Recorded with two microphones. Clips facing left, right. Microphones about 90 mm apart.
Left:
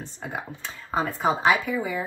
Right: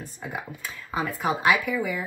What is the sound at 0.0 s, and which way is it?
Speech, 30° left (ahead or behind).